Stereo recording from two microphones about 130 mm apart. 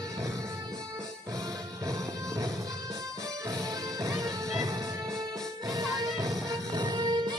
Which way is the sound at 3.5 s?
30° right (ahead or behind).